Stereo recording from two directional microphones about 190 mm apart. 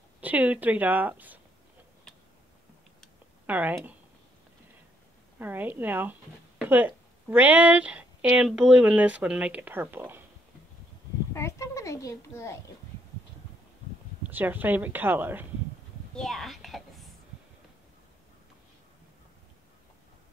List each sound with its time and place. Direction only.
0.2 s a woman's voice: 10° right (ahead or behind)
3.4 s a woman's voice: 10° right (ahead or behind)
5.4 s a woman's voice: 10° right (ahead or behind)
11.3 s a child's voice: 15° left (ahead or behind)
14.2 s a woman's voice: 10° right (ahead or behind)
16.2 s whispering: centre (ahead or behind)